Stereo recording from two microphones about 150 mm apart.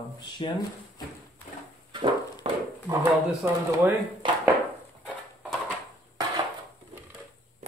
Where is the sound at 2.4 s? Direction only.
40° right (ahead or behind).